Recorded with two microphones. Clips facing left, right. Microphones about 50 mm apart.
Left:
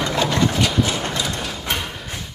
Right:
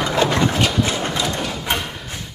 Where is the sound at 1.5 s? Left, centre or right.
Centre.